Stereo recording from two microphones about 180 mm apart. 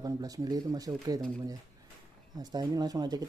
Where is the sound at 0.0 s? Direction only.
20° right (ahead or behind).